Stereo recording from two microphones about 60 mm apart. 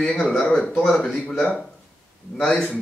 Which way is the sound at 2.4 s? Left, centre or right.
Centre.